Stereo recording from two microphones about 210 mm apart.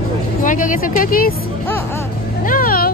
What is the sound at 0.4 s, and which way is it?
Speech, 40° left (ahead or behind).